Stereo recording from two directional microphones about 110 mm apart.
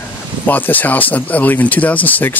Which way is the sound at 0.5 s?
15° left (ahead or behind).